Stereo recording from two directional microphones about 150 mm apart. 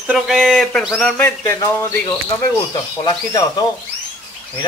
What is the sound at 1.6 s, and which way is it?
Speech, 25° left (ahead or behind).